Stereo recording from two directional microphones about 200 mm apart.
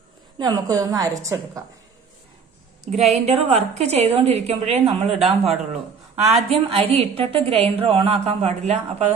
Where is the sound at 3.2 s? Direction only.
30° right (ahead or behind).